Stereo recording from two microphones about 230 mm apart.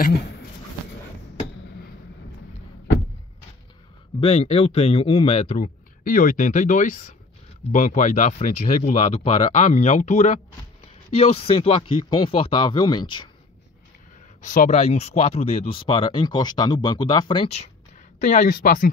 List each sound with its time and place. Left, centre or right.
4.2 s speech: left
14.4 s speech: left